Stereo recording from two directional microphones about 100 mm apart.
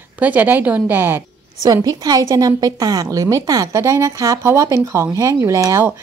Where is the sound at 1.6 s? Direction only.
40° right (ahead or behind).